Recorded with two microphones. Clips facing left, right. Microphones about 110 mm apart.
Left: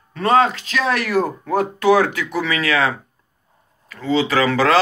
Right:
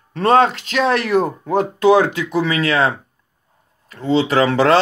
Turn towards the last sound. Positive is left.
turn(degrees=-30)  # may be behind; listen again after turning